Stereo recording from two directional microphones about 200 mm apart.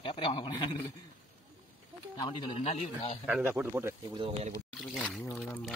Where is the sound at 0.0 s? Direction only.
25° left (ahead or behind).